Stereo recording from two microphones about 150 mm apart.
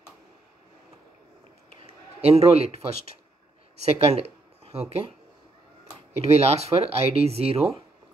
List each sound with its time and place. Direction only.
2.2 s speech: 45° right (ahead or behind)
6.3 s speech: 45° right (ahead or behind)